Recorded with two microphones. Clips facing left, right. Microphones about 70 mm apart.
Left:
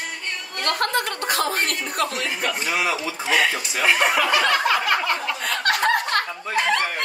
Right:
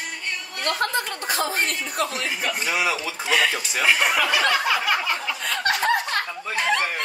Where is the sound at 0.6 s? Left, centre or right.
Left.